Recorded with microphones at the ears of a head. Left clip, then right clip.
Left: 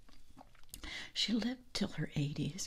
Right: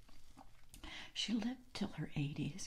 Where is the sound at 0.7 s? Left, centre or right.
Left.